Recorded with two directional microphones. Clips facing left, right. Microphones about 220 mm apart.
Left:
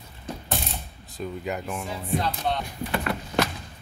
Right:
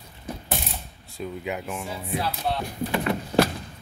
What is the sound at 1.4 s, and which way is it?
Speech, 5° right (ahead or behind).